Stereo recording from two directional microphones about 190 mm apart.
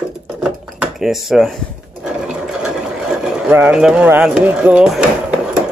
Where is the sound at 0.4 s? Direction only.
Centre (ahead or behind).